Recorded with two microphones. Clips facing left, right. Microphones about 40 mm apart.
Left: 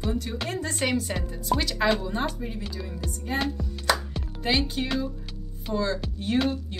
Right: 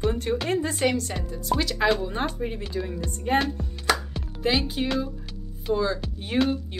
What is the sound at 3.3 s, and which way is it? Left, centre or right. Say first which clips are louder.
Speech: right 6 dB; right.